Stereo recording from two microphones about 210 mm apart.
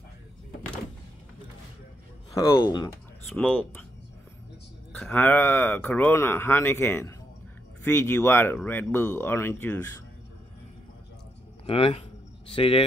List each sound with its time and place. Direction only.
2.3 s speech: 15° left (ahead or behind)
3.3 s speech: centre (ahead or behind)
4.9 s speech: 5° left (ahead or behind)
11.6 s speech: 25° left (ahead or behind)